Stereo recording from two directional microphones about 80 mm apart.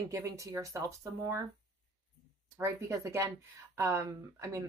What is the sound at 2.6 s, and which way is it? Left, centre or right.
Speech, right.